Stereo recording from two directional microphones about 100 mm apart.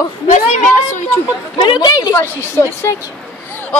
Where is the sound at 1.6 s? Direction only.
50° left (ahead or behind).